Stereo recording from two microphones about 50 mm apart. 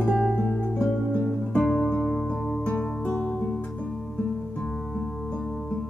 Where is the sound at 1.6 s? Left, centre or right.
Centre.